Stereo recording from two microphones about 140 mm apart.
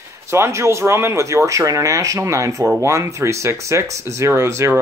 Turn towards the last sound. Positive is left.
turn(degrees=-20)  # may be behind; listen again after turning